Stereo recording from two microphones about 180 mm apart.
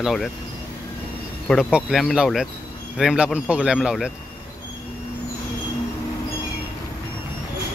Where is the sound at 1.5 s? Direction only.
5° right (ahead or behind).